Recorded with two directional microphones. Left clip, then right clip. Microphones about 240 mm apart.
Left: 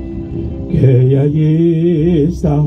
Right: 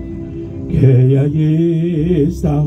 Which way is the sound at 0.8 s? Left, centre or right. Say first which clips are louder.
Left 2 dB; right.